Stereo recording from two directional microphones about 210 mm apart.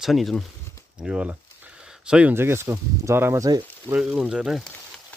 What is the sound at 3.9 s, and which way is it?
Speech, 5° right (ahead or behind).